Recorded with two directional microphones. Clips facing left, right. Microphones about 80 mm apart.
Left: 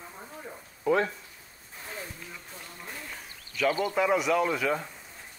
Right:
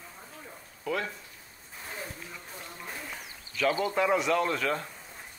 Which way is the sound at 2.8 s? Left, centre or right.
Centre.